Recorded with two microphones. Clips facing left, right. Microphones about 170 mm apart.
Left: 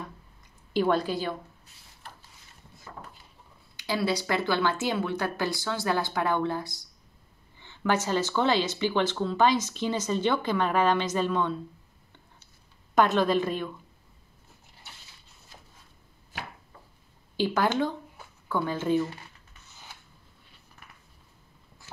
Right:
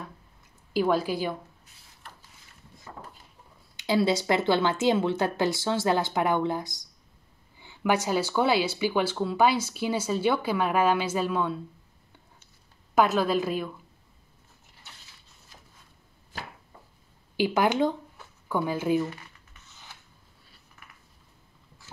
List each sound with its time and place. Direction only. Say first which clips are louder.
0.7 s speech: even; 5° right (ahead or behind)
3.7 s speech: right 4 dB; 25° right (ahead or behind); by 11.6 s 5° right (ahead or behind)
12.9 s a woman's voice: even; 5° right (ahead or behind)
17.4 s speech: right 2 dB; 15° right (ahead or behind)